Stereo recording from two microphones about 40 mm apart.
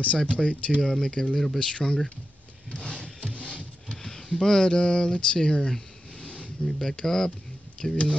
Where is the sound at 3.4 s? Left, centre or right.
Left.